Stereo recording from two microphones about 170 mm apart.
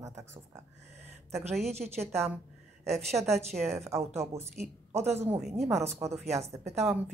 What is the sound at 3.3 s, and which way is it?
Speech, 40° right (ahead or behind).